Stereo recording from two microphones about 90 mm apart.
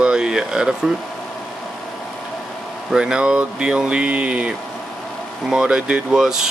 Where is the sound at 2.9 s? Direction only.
10° right (ahead or behind).